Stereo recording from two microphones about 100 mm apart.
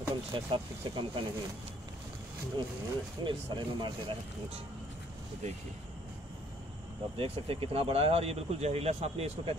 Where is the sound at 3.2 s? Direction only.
55° right (ahead or behind).